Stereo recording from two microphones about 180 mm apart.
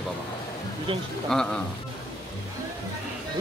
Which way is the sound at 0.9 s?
30° right (ahead or behind).